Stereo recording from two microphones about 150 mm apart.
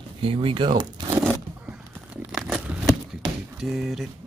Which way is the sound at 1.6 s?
10° right (ahead or behind).